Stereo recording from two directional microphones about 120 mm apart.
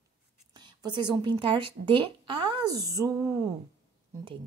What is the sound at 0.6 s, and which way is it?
A woman's voice, 40° right (ahead or behind).